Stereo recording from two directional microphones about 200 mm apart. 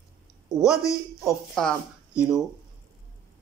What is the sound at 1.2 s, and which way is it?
Speech, centre (ahead or behind).